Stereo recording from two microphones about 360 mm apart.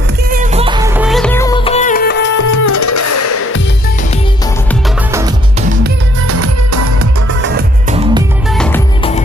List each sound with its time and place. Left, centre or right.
0.3 s music: centre; by 2.1 s left
2.3 s music: left
5.1 s music: centre
6.2 s music: right
8.5 s music: centre